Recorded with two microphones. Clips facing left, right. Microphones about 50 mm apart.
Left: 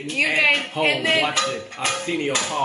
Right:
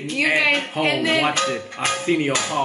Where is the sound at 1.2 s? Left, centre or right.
Right.